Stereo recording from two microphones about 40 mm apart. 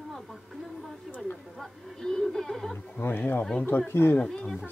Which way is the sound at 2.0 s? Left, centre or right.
Centre.